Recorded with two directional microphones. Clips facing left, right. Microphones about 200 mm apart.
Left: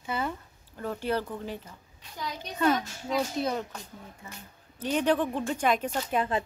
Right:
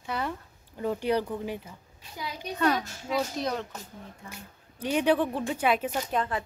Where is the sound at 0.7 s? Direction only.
15° right (ahead or behind); by 4.3 s 5° left (ahead or behind).